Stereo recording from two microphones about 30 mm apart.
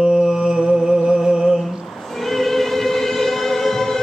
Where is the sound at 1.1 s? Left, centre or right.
Centre.